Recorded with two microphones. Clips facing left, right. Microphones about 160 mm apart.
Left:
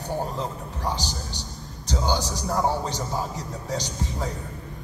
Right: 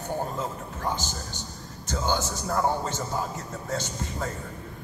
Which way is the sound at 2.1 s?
40° left (ahead or behind).